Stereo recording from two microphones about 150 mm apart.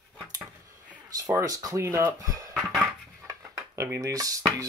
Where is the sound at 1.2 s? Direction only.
25° right (ahead or behind).